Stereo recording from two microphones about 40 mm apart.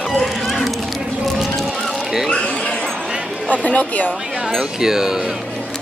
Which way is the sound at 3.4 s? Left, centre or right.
Left.